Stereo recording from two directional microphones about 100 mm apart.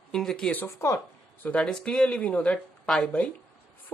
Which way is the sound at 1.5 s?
10° left (ahead or behind).